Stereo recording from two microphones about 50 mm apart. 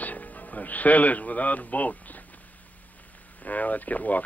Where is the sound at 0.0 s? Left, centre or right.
Left.